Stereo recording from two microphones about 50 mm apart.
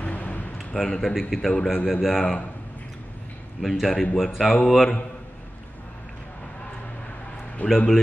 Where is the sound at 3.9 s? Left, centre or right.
Centre.